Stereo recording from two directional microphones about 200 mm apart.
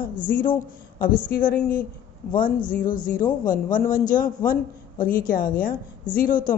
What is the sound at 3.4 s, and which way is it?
A man's voice, 40° left (ahead or behind).